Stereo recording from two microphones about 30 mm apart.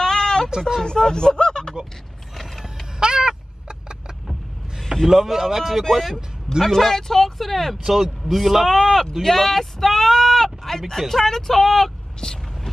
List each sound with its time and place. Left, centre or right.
0.0 s a sound: left
0.8 s speech: left
2.6 s vehicle: right
4.3 s vehicle: centre
5.0 s speech: centre
5.9 s speech: centre
7.7 s speech: centre
8.6 s speech: centre
12.2 s speech: left